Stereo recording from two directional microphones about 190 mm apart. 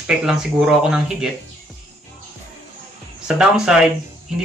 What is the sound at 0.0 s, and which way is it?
Speech, 5° right (ahead or behind).